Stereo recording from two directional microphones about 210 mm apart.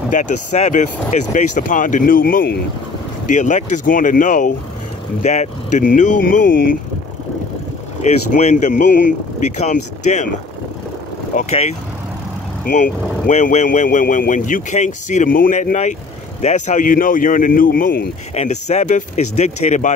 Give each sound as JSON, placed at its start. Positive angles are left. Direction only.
{"t": 0.1, "sound": "speech", "side_deg": 35}
{"t": 8.0, "sound": "speech", "side_deg": 35}
{"t": 11.3, "sound": "speech", "side_deg": 30}
{"t": 18.3, "sound": "speech", "side_deg": 30}